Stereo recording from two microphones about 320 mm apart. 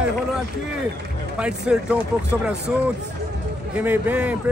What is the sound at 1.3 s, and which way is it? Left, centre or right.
Speech, centre.